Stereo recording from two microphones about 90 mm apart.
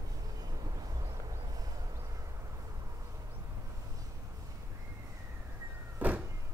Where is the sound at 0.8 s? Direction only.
45° right (ahead or behind).